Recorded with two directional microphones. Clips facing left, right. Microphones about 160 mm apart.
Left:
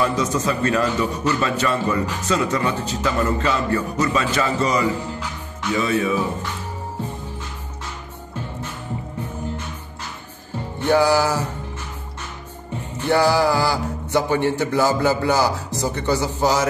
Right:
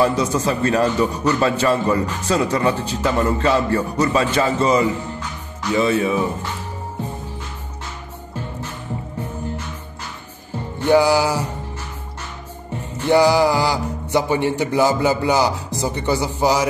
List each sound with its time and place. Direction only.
0.0 s a man's voice: 30° right (ahead or behind)
10.9 s speech: 10° right (ahead or behind)
13.1 s speech: 15° right (ahead or behind)